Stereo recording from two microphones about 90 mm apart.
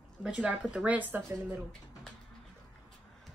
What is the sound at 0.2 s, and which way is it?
Speech, 10° right (ahead or behind).